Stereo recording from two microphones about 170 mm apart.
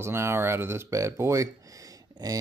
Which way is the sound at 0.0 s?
15° right (ahead or behind).